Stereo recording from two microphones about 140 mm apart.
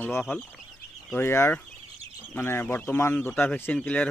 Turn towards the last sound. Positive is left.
turn(degrees=10)  # may be behind; listen again after turning